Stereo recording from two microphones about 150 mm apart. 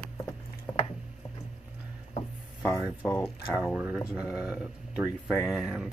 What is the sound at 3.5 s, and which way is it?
Speech, 5° right (ahead or behind).